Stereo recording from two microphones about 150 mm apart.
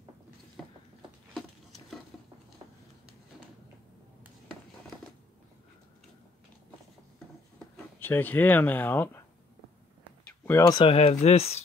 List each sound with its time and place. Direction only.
0.6 s a sound: centre (ahead or behind)
1.3 s patter: centre (ahead or behind)
7.5 s speech: 10° left (ahead or behind)
10.4 s speech: 15° left (ahead or behind)
10.7 s speech: 35° left (ahead or behind)